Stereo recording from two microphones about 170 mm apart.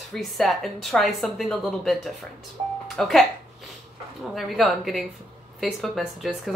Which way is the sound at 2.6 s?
35° right (ahead or behind).